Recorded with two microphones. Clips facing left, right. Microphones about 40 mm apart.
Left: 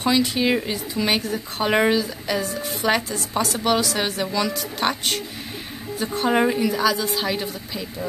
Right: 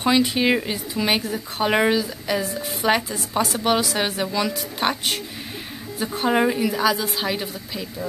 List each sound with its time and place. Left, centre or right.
0.0 s a woman's voice: centre
0.6 s a woman's voice: centre